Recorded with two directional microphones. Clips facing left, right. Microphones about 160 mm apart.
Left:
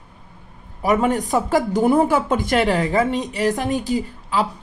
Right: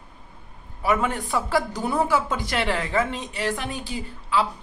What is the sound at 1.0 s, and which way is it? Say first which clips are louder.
Speech: left 6 dB; 40° left (ahead or behind).